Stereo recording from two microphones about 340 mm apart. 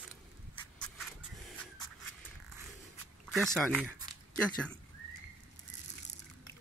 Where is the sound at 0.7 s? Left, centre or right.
Centre.